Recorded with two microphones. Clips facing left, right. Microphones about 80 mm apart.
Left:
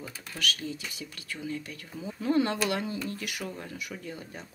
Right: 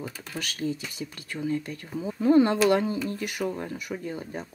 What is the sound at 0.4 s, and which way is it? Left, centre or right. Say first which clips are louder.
Speech: right 2 dB; right.